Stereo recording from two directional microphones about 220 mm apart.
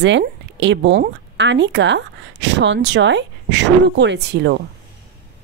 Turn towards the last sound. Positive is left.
turn(degrees=-50)  # may be behind; listen again after turning